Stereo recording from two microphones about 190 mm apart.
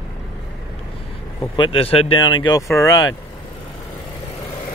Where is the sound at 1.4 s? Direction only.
25° left (ahead or behind).